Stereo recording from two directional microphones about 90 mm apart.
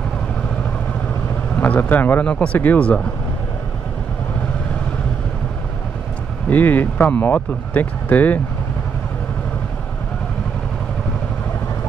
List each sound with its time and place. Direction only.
1.6 s speech: 20° left (ahead or behind)
6.5 s speech: 20° left (ahead or behind)